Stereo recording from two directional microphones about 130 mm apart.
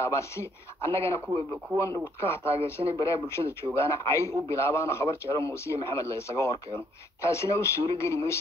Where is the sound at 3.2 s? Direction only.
20° left (ahead or behind).